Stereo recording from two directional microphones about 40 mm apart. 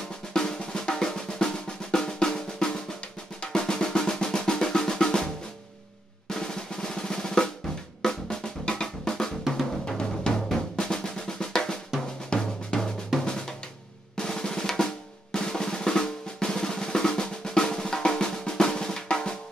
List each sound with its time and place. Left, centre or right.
0.3 s drum: centre